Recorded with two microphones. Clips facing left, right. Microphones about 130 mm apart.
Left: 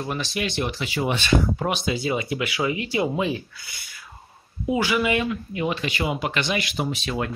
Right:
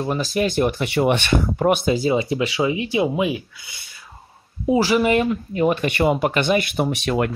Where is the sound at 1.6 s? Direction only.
50° right (ahead or behind).